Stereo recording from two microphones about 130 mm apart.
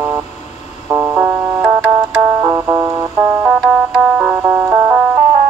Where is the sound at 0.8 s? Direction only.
25° right (ahead or behind).